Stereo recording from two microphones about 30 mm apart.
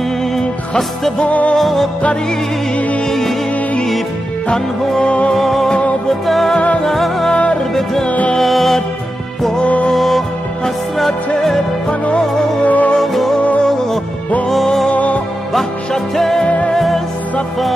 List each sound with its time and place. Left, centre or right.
1.6 s music: centre
3.1 s music: centre
5.3 s music: centre
8.4 s music: centre
9.9 s music: centre
12.6 s music: left
13.0 s music: centre
14.9 s music: left
16.2 s music: centre
16.4 s music: left
16.7 s music: centre